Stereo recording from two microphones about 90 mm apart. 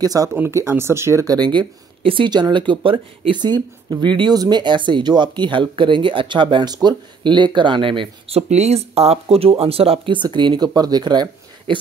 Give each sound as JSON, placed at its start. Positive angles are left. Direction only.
{"t": 0.0, "sound": "speech", "side_deg": -45}
{"t": 0.3, "sound": "speech", "side_deg": -30}
{"t": 1.2, "sound": "speech", "side_deg": -50}
{"t": 9.4, "sound": "speech", "side_deg": -90}
{"t": 10.2, "sound": "speech", "side_deg": -60}